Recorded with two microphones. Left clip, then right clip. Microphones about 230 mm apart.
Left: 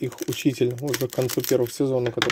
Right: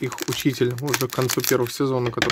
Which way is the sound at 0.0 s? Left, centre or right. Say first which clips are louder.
Right 1 dB; centre.